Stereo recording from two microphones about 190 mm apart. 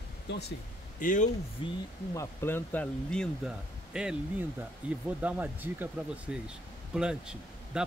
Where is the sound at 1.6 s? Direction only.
30° left (ahead or behind).